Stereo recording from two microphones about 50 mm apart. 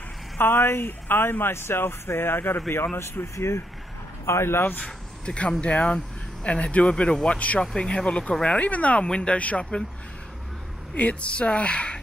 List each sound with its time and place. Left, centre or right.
0.4 s speech: left
3.3 s speech: left
4.6 s speech: left
5.2 s speech: centre
7.6 s speech: centre
11.0 s speech: left